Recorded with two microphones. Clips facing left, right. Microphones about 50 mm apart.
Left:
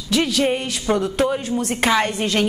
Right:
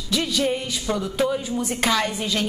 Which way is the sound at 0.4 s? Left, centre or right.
Left.